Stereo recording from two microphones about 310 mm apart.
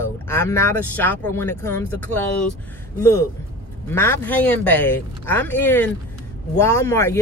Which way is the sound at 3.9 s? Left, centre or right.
Centre.